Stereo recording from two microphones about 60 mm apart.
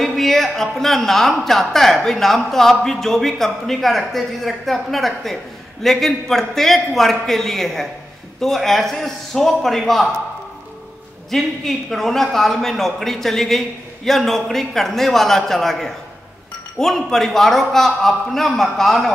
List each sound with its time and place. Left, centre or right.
0.0 s speech: centre
11.2 s speech: centre